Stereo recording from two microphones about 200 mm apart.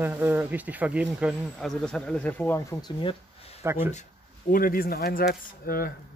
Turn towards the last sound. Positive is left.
turn(degrees=50)  # may be behind; listen again after turning